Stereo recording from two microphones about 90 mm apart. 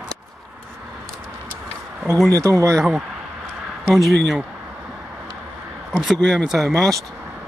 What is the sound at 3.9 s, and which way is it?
Speech, centre (ahead or behind).